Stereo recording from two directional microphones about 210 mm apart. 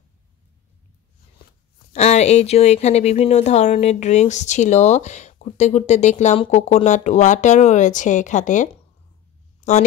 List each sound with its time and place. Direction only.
1.9 s speech: 30° left (ahead or behind)